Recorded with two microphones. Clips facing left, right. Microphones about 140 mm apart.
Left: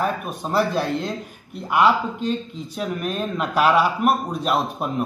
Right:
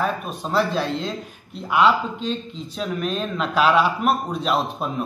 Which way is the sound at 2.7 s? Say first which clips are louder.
Right 1 dB; 10° left (ahead or behind).